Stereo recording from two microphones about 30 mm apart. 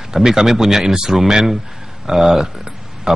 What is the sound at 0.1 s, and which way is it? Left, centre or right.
A man's voice, centre.